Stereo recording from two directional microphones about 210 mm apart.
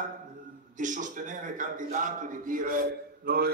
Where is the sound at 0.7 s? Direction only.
35° right (ahead or behind).